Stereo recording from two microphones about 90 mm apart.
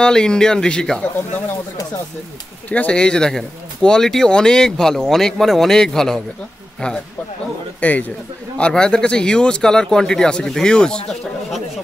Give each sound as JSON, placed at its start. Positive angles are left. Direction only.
{"t": 0.0, "sound": "speech", "side_deg": 10}
{"t": 2.7, "sound": "speech", "side_deg": 10}
{"t": 7.8, "sound": "speech", "side_deg": 15}